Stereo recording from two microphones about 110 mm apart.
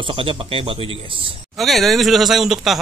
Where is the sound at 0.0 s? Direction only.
50° right (ahead or behind).